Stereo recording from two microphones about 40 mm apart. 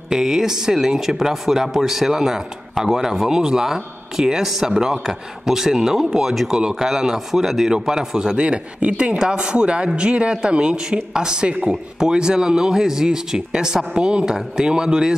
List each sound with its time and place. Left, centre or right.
0.1 s speech: centre